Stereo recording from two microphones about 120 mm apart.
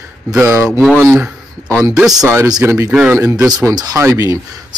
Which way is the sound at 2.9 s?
10° right (ahead or behind).